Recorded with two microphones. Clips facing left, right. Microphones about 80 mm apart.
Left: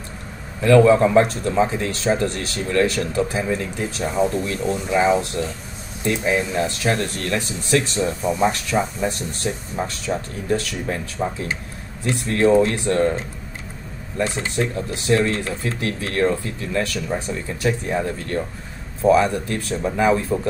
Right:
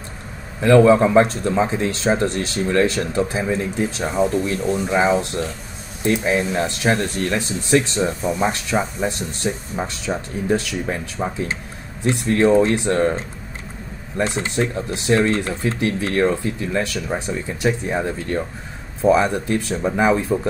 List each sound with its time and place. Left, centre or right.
0.6 s speech: right
4.9 s speech: centre
6.0 s speech: right